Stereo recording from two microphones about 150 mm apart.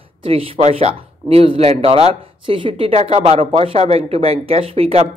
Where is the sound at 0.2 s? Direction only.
40° right (ahead or behind).